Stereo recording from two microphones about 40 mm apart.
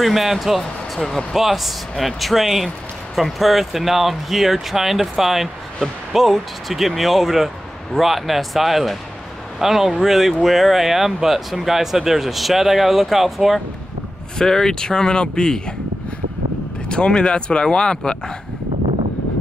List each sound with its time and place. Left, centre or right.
0.0 s speech: centre
14.4 s speech: centre
16.9 s speech: left